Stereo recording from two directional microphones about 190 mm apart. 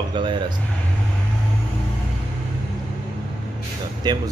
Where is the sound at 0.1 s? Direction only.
25° right (ahead or behind).